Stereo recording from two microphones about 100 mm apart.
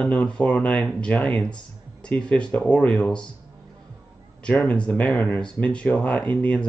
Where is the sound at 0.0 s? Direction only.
10° left (ahead or behind).